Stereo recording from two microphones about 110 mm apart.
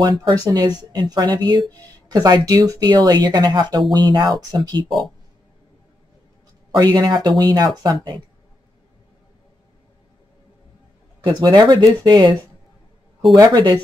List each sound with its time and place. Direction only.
0.5 s speech: 40° right (ahead or behind)
6.7 s speech: 40° right (ahead or behind)
11.2 s speech: 40° right (ahead or behind)
13.4 s speech: 40° right (ahead or behind)